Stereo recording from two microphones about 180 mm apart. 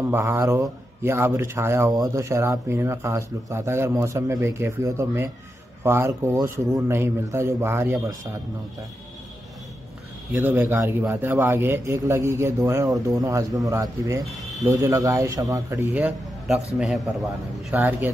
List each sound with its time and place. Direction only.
0.1 s a man's voice: 15° right (ahead or behind)
10.3 s a man's voice: 15° right (ahead or behind)
17.7 s a man's voice: 10° right (ahead or behind)